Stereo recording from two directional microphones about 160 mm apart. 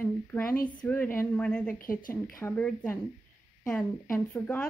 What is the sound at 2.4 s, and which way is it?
A woman's voice, 10° left (ahead or behind).